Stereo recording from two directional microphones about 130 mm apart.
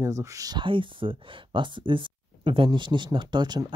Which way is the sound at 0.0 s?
25° right (ahead or behind).